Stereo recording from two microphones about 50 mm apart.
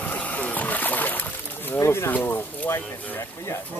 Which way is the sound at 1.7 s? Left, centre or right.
Left.